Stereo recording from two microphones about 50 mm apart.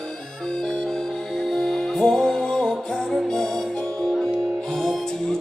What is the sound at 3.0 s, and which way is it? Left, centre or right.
Music, centre.